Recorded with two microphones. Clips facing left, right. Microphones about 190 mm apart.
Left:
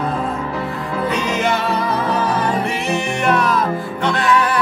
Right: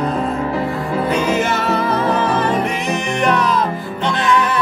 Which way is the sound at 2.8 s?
15° right (ahead or behind).